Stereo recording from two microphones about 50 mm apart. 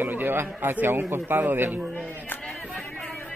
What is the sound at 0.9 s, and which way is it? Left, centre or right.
Speech, right.